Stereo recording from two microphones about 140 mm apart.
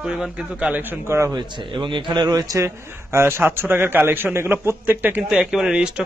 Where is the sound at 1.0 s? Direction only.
20° right (ahead or behind).